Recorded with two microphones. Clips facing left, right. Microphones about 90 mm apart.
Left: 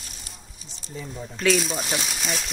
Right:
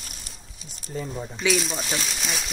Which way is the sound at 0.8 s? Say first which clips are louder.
Right 5 dB; 50° right (ahead or behind).